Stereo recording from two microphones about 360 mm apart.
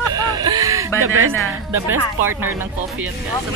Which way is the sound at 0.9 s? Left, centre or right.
Right.